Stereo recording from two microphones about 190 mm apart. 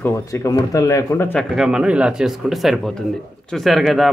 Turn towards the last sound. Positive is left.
turn(degrees=0)  # may be behind; listen again after turning